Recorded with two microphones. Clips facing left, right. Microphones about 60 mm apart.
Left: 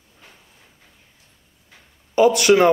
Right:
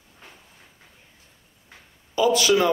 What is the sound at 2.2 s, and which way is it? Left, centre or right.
Speech, left.